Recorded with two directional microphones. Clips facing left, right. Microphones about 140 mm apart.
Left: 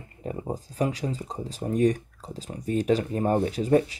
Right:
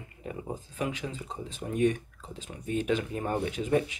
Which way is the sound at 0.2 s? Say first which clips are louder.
Left 5 dB; 35° left (ahead or behind).